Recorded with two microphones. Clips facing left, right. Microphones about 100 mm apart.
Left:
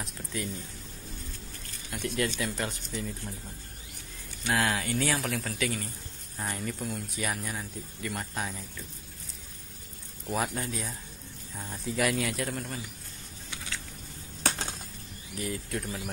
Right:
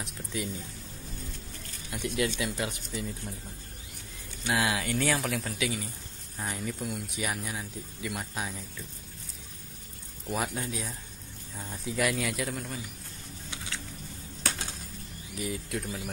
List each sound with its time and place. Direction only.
0.0 s music: 15° right (ahead or behind)
2.0 s speech: 10° right (ahead or behind)
4.5 s speech: 10° right (ahead or behind)
4.8 s speech: centre (ahead or behind)
10.2 s speech: centre (ahead or behind)
15.3 s speech: 5° right (ahead or behind)